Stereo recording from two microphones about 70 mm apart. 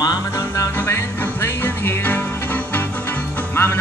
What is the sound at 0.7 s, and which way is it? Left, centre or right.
Music, left.